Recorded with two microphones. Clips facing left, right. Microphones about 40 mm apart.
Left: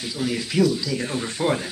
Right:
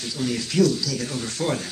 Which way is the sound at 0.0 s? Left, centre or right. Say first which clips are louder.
Left 1 dB; centre.